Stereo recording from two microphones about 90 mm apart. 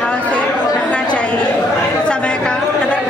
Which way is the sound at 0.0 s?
15° left (ahead or behind).